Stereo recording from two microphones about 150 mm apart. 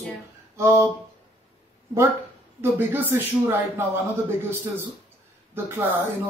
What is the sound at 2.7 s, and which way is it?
Speech, 15° right (ahead or behind).